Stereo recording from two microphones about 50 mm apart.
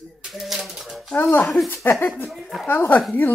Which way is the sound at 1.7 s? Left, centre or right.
Left.